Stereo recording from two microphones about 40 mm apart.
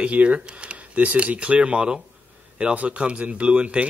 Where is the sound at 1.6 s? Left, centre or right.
Centre.